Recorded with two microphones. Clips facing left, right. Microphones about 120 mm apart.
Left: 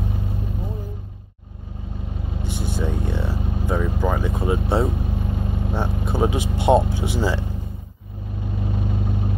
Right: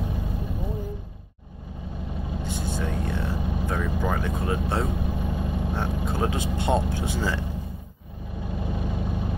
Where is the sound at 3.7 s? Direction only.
15° left (ahead or behind).